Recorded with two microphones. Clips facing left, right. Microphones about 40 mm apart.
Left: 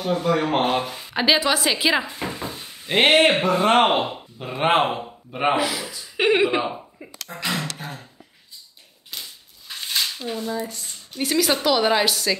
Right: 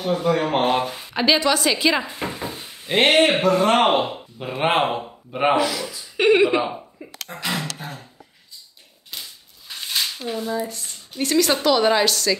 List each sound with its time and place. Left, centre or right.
0.0 s a woman's voice: centre
1.1 s a woman's voice: centre
2.0 s a sound: centre
2.9 s a woman's voice: centre
3.8 s a woman's voice: centre
5.6 s a woman's voice: centre
7.3 s speech: centre
7.7 s a sound: centre
9.1 s a sound: centre
10.1 s a woman's voice: centre